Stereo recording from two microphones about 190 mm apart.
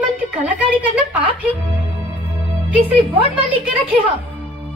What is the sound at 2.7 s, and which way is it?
A woman's voice, 30° right (ahead or behind).